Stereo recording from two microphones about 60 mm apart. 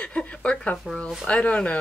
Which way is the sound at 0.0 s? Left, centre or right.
Centre.